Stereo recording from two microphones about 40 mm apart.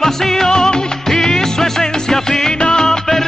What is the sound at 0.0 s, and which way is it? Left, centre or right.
Music, centre.